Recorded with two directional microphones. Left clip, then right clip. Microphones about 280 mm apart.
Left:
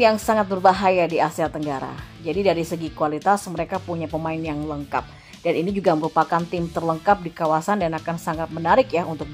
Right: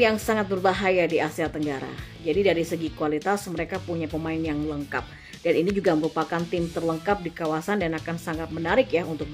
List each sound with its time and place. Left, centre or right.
0.0 s speech: centre
5.9 s speech: centre
6.5 s speech: centre